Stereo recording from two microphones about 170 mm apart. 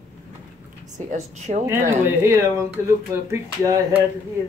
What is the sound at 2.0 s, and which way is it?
Speech, 15° right (ahead or behind).